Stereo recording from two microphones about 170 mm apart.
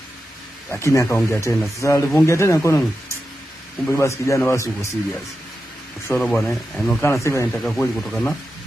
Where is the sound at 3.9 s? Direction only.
15° left (ahead or behind).